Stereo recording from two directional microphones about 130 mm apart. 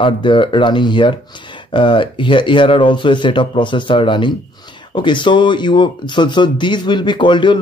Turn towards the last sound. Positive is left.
turn(degrees=35)  # may be behind; listen again after turning